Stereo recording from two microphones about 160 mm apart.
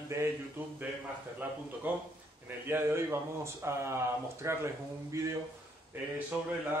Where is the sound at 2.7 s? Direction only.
15° right (ahead or behind).